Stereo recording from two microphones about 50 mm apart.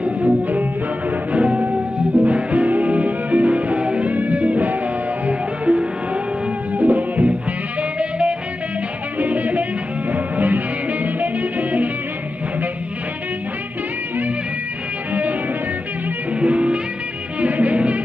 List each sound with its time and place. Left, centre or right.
0.0 s music: right
1.3 s music: right
9.2 s music: right
16.3 s music: right